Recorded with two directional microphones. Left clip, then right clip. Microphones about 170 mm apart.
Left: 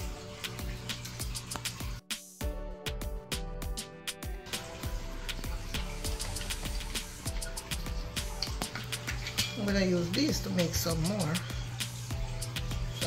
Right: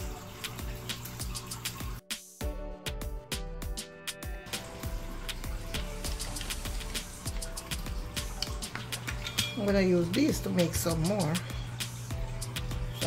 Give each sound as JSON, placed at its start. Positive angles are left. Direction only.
{"t": 2.8, "sound": "music", "side_deg": 0}
{"t": 9.7, "sound": "speech", "side_deg": -40}
{"t": 10.9, "sound": "speech", "side_deg": 0}